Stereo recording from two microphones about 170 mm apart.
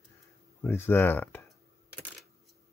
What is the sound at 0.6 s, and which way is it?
Speech, 15° left (ahead or behind).